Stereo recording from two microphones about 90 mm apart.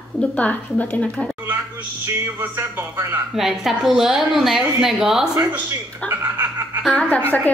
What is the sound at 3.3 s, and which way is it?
Speech, 5° right (ahead or behind).